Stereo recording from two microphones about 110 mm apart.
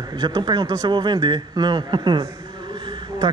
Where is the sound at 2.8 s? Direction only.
45° right (ahead or behind).